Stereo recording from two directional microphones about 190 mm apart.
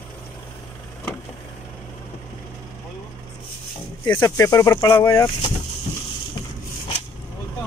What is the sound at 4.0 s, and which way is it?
Speech, 10° left (ahead or behind).